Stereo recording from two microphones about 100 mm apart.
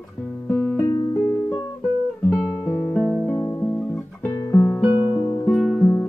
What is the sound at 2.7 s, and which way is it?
Music, centre (ahead or behind).